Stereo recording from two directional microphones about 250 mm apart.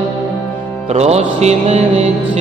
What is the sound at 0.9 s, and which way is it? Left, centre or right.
Mantra, right.